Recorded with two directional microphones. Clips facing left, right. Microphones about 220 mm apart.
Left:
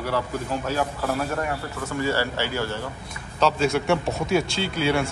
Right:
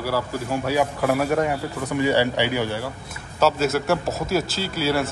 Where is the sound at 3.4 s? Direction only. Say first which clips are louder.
Right 1 dB; 5° right (ahead or behind).